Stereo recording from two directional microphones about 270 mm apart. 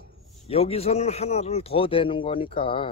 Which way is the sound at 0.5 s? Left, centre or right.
Left.